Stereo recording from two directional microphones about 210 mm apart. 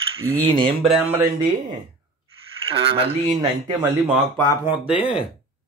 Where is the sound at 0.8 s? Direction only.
5° right (ahead or behind).